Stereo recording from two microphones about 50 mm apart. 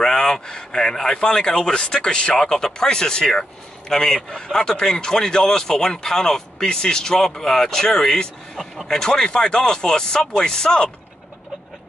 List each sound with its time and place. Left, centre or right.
0.0 s speech: centre